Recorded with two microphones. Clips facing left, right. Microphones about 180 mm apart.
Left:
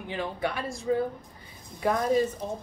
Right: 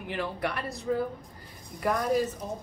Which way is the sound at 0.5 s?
70° right (ahead or behind).